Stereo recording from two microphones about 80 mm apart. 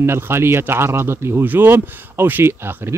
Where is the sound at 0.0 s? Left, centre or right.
Right.